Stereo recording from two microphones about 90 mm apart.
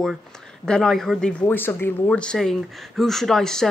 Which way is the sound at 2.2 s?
10° left (ahead or behind).